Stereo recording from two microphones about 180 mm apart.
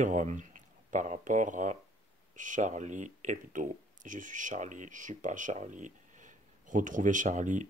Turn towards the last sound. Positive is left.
turn(degrees=-45)  # may be behind; listen again after turning